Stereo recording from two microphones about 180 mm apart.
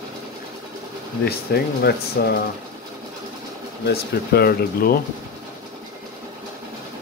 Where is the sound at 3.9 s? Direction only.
60° left (ahead or behind).